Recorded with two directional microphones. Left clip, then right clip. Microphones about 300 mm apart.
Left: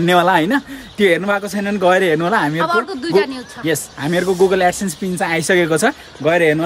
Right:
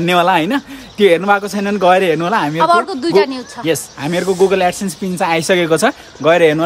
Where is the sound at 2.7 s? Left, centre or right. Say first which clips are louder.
Right 4 dB; centre.